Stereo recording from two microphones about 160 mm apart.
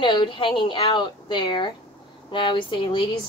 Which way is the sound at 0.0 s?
30° left (ahead or behind).